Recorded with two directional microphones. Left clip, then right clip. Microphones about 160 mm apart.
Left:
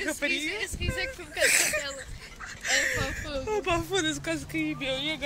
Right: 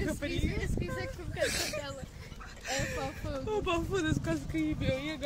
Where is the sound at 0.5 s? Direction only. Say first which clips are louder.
Left 6 dB; 20° right (ahead or behind).